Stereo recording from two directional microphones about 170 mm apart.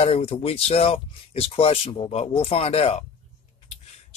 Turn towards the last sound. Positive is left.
turn(degrees=35)  # may be behind; listen again after turning